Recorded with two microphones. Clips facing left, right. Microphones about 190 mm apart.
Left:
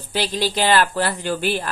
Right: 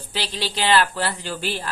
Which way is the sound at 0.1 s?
50° left (ahead or behind).